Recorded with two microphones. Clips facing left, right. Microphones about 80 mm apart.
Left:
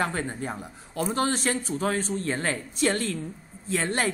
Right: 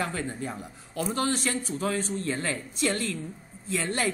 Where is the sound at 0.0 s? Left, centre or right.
Left.